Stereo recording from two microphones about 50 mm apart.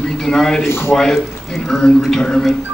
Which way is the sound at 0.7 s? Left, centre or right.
Left.